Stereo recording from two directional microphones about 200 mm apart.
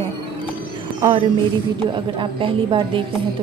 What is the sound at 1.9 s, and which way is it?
Speech, 25° right (ahead or behind).